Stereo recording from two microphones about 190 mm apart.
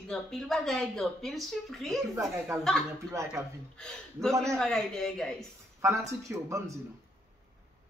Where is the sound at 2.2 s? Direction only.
15° right (ahead or behind).